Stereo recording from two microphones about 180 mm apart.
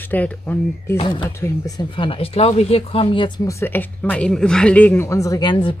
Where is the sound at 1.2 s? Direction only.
15° left (ahead or behind); by 3.3 s 30° left (ahead or behind).